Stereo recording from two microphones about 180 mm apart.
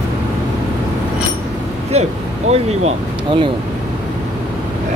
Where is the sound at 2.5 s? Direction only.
35° right (ahead or behind).